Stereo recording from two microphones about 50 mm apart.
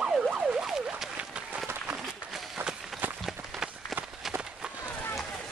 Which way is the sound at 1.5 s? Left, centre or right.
Right.